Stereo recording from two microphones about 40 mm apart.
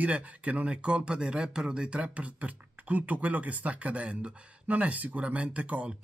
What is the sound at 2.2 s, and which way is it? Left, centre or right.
Speech, right.